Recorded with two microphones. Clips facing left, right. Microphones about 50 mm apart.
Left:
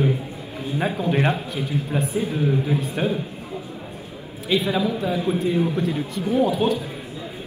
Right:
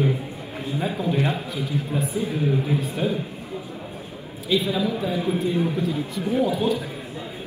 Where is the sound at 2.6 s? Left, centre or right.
Left.